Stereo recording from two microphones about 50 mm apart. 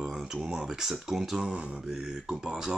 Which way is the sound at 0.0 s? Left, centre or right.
Centre.